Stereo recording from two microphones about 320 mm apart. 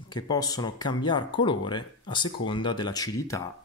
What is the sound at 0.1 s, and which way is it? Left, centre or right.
Speech, centre.